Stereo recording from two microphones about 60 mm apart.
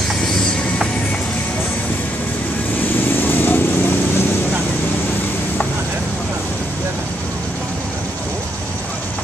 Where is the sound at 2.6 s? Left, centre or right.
Left.